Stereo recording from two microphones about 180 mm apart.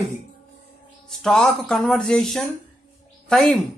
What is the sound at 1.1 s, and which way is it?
Speech, 5° left (ahead or behind).